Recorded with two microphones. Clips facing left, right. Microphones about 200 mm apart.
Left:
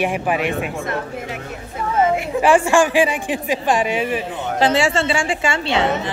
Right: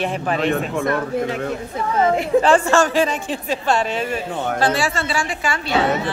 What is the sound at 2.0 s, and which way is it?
A woman's voice, 10° left (ahead or behind).